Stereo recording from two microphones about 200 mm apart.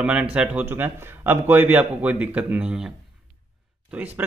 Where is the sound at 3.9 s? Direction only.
10° right (ahead or behind).